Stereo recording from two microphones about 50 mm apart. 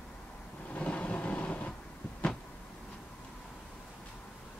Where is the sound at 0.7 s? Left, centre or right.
Left.